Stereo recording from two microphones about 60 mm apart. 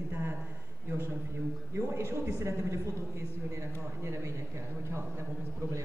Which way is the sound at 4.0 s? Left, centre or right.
Right.